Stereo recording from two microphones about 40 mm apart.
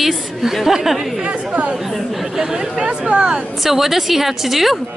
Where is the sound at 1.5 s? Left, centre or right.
Right.